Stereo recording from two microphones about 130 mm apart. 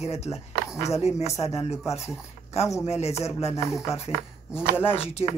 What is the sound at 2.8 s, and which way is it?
Speech, 55° left (ahead or behind).